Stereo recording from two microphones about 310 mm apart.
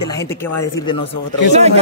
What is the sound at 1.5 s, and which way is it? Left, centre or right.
Speech, centre.